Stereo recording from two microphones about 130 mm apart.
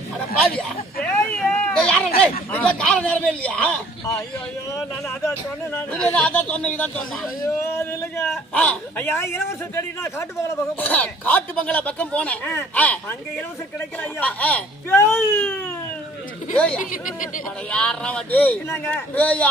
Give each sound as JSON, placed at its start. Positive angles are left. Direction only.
{"t": 0.6, "sound": "a sound", "side_deg": 10}
{"t": 2.5, "sound": "a man's voice", "side_deg": 10}
{"t": 5.8, "sound": "a man's voice", "side_deg": 10}
{"t": 7.4, "sound": "a man's voice", "side_deg": 20}
{"t": 14.2, "sound": "a man's voice", "side_deg": 10}
{"t": 16.9, "sound": "speech", "side_deg": 90}
{"t": 17.6, "sound": "a man's voice", "side_deg": 10}